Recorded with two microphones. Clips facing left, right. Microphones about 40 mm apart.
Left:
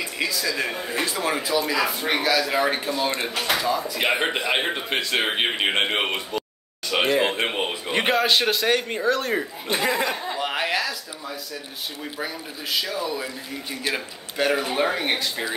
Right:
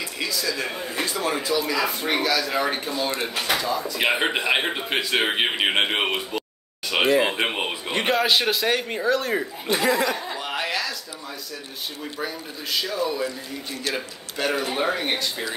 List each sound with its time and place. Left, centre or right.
0.3 s a man's voice: centre
4.0 s a man's voice: centre
9.7 s a sound: left
12.2 s speech: centre